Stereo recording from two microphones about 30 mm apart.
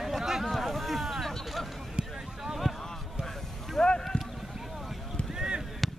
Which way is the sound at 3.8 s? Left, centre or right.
Centre.